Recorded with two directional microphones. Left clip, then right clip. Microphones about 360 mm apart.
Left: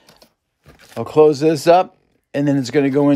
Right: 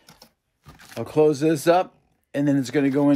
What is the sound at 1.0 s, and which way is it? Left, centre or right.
Speech, left.